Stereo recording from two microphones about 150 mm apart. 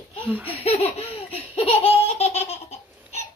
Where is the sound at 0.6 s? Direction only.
45° left (ahead or behind).